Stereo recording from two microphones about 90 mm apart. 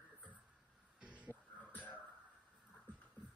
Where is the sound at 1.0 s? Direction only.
15° right (ahead or behind).